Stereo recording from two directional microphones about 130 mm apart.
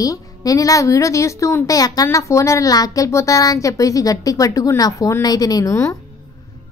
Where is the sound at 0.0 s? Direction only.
30° left (ahead or behind).